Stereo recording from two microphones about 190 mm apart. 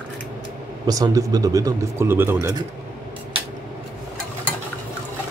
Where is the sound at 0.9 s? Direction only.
20° right (ahead or behind).